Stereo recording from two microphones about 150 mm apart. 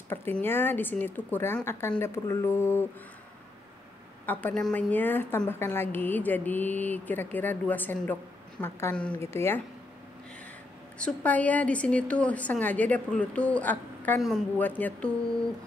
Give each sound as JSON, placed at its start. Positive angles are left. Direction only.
{"t": 0.1, "sound": "a woman's voice", "side_deg": 15}
{"t": 4.3, "sound": "a woman's voice", "side_deg": 10}
{"t": 11.0, "sound": "a woman's voice", "side_deg": 10}